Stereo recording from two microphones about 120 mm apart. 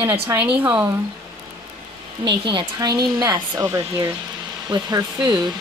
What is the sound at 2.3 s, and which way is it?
Speech, 40° right (ahead or behind).